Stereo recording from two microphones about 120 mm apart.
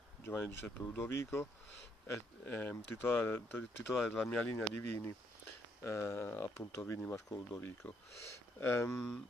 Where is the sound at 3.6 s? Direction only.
Centre (ahead or behind).